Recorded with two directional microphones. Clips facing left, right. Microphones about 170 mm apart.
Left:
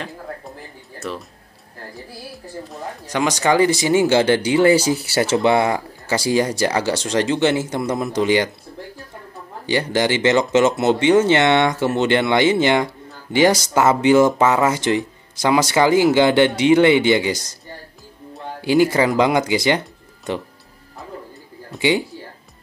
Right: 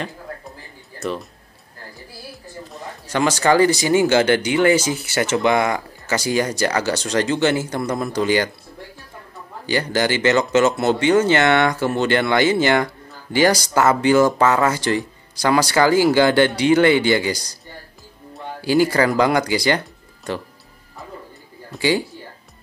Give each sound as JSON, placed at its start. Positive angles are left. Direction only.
{"t": 0.9, "sound": "speech", "side_deg": 0}
{"t": 3.1, "sound": "speech", "side_deg": 15}
{"t": 9.7, "sound": "speech", "side_deg": 25}
{"t": 14.4, "sound": "speech", "side_deg": 10}
{"t": 14.7, "sound": "speech", "side_deg": 20}
{"t": 18.6, "sound": "speech", "side_deg": 20}
{"t": 21.7, "sound": "speech", "side_deg": 20}